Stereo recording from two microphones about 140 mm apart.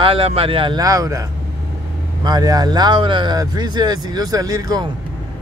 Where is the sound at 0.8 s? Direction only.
25° right (ahead or behind).